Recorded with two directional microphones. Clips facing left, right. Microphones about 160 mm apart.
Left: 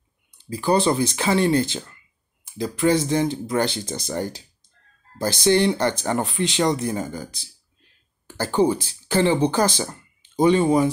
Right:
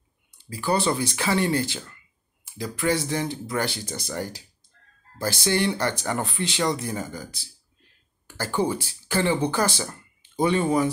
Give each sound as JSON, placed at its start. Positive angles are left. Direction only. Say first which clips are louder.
{"t": 0.6, "sound": "speech", "louder": "left 4 dB", "side_deg": 20}